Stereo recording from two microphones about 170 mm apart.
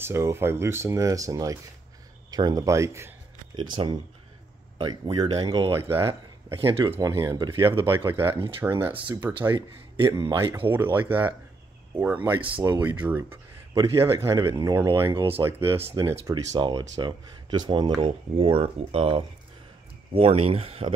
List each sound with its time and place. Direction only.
0.0 s speech: 15° right (ahead or behind)
3.7 s speech: 30° right (ahead or behind)
5.9 s speech: 30° right (ahead or behind); by 8.4 s 15° right (ahead or behind)
8.9 s a man's voice: 30° right (ahead or behind)
10.7 s speech: 10° right (ahead or behind)
12.4 s speech: 30° right (ahead or behind)
13.0 s speech: 10° right (ahead or behind)
15.1 s speech: 35° right (ahead or behind)
15.9 s speech: 20° right (ahead or behind); by 20.9 s 35° right (ahead or behind)